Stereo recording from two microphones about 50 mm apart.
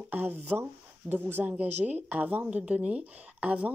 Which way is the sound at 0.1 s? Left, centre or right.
Right.